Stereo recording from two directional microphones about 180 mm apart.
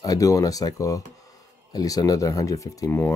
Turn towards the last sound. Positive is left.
turn(degrees=15)  # may be behind; listen again after turning